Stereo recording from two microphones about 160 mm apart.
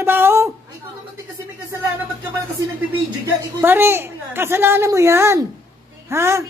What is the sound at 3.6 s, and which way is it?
A woman's voice, 15° right (ahead or behind).